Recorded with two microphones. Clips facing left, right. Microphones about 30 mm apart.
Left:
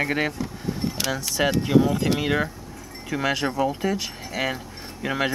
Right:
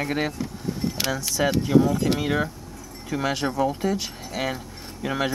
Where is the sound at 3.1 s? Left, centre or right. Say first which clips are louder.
Left 1 dB; centre.